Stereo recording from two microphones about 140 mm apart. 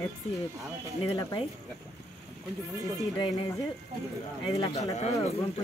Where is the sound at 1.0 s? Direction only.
25° left (ahead or behind).